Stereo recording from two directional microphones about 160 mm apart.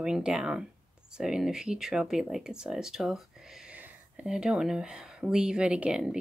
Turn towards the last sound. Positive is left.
turn(degrees=-5)  # may be behind; listen again after turning